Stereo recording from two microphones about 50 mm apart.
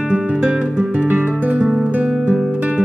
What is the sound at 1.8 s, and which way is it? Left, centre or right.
Guitar, right.